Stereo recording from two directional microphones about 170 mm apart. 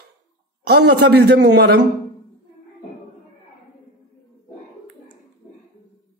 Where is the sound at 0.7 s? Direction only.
80° right.